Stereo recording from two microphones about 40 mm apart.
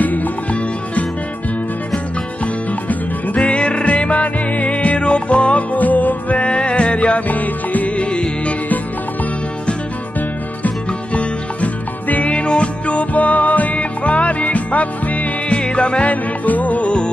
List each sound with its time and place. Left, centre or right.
0.0 s music: left
2.4 s music: left
6.3 s music: left
10.9 s music: left
15.5 s music: left